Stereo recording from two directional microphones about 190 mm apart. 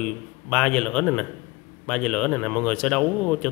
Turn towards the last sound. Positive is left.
turn(degrees=5)  # may be behind; listen again after turning